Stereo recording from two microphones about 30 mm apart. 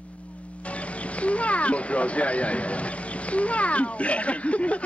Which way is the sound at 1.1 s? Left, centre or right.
Left.